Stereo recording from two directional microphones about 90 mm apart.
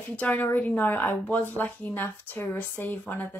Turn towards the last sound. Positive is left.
turn(degrees=20)  # may be behind; listen again after turning